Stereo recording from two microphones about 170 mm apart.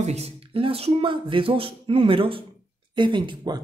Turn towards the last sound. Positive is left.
turn(degrees=-25)  # may be behind; listen again after turning